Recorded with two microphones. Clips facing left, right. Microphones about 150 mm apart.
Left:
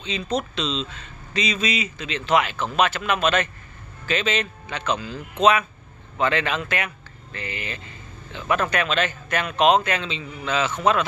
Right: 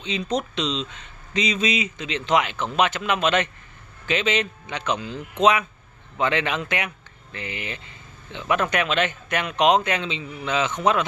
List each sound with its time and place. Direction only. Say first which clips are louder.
0.0 s speech: even; 20° right (ahead or behind)